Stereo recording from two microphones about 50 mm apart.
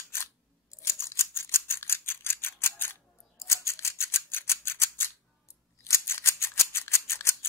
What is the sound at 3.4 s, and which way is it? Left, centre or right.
Scissors, left.